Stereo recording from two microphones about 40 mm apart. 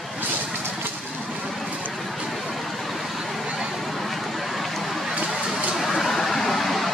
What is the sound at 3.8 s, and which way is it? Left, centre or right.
Vehicle, centre.